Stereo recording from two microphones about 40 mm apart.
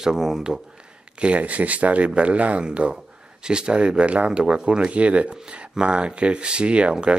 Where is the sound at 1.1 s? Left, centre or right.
Right.